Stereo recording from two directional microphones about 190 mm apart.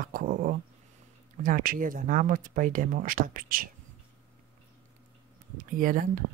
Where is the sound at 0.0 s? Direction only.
45° right (ahead or behind).